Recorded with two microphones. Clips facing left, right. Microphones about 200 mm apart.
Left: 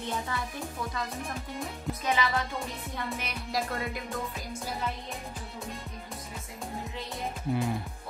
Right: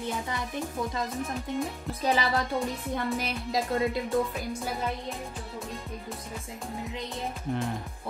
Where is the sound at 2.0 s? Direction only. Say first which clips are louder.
Right 3 dB; 35° right (ahead or behind).